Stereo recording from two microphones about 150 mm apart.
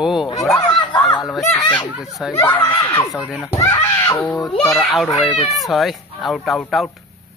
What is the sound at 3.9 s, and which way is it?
Speech, 20° left (ahead or behind).